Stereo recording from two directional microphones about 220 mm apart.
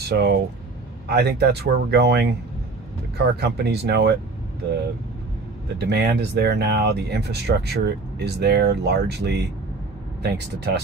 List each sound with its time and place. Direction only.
0.1 s speech: 45° right (ahead or behind)
5.8 s speech: 50° right (ahead or behind)